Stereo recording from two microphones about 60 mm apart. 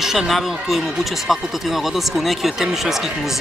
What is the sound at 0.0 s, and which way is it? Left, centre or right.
Speech, centre.